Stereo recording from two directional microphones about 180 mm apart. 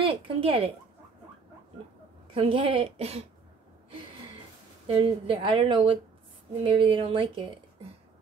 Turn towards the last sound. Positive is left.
turn(degrees=-30)  # may be behind; listen again after turning